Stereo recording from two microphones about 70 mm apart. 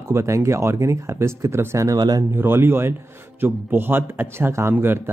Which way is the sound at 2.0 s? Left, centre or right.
Right.